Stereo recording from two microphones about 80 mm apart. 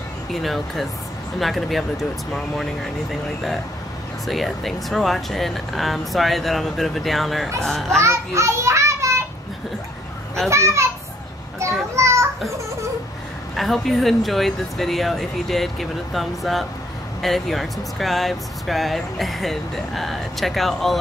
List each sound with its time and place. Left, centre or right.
0.3 s speech: centre
8.0 s a child's voice: right
10.5 s a child's voice: right
11.6 s children playing: right
13.6 s speech: centre